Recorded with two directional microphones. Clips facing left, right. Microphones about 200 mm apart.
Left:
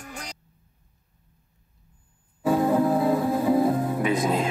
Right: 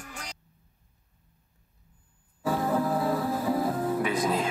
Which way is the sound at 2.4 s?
25° left (ahead or behind).